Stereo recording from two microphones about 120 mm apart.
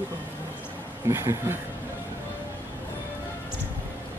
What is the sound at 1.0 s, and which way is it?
Speech, 25° right (ahead or behind).